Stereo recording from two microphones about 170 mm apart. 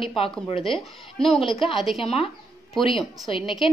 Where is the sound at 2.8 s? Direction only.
Centre (ahead or behind).